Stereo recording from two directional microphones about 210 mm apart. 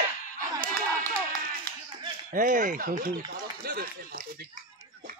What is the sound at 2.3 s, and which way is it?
Speech, 40° right (ahead or behind).